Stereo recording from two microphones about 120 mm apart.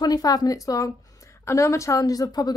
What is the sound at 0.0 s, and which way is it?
Speech, 35° left (ahead or behind).